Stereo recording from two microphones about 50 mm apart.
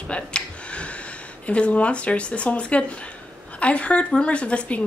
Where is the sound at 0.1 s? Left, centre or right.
Left.